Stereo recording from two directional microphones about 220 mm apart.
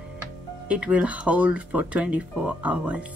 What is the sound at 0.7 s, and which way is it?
Speech, 5° right (ahead or behind).